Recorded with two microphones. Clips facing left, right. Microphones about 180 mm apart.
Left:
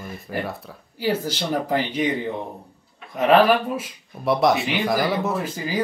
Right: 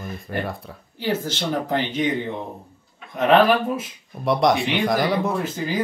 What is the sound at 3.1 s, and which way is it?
Speech, 5° left (ahead or behind).